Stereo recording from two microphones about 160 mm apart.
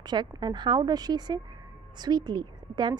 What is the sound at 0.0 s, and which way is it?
A woman's voice, 25° right (ahead or behind).